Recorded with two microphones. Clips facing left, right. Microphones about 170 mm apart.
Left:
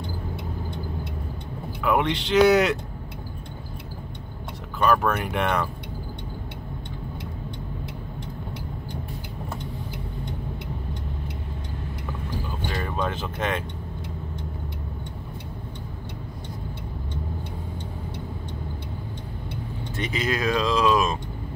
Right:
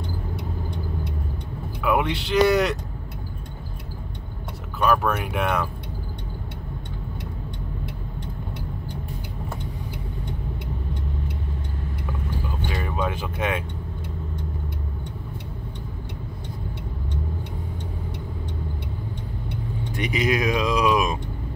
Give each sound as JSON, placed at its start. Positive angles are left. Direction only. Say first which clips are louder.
{"t": 1.8, "sound": "speech", "louder": "even", "side_deg": -5}
{"t": 4.7, "sound": "speech", "louder": "even", "side_deg": -5}
{"t": 12.4, "sound": "vehicle", "louder": "right 1 dB", "side_deg": -5}
{"t": 20.0, "sound": "speech", "louder": "right 3 dB", "side_deg": -15}